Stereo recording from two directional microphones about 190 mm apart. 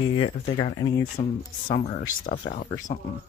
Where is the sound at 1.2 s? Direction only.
35° left (ahead or behind).